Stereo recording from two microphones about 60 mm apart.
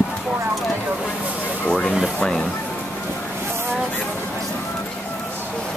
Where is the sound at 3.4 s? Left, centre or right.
Right.